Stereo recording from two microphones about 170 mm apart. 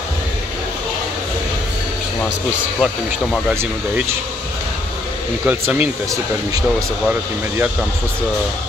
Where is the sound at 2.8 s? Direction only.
5° right (ahead or behind).